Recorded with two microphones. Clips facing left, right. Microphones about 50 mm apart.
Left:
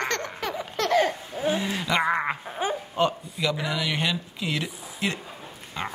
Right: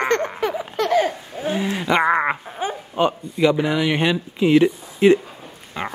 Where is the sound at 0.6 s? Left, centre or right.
Centre.